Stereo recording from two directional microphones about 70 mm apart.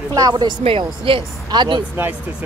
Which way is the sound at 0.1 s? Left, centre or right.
Right.